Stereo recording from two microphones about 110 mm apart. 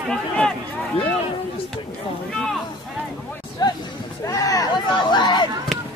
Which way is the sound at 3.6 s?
35° left (ahead or behind).